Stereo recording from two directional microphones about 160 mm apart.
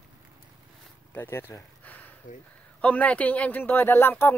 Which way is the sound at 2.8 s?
10° left (ahead or behind).